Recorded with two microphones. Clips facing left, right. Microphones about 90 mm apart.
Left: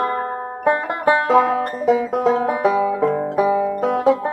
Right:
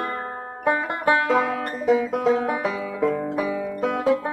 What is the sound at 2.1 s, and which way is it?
Banjo, 45° left (ahead or behind).